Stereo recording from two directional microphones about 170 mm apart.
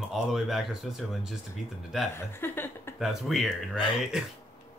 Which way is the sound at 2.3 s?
15° left (ahead or behind).